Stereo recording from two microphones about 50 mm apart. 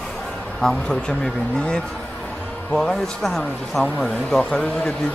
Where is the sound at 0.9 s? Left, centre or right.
Centre.